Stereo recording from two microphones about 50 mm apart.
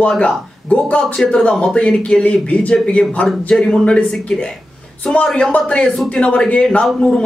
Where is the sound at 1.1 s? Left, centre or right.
Centre.